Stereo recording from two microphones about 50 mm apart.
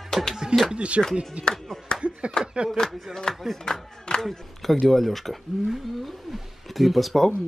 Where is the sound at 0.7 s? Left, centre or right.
Right.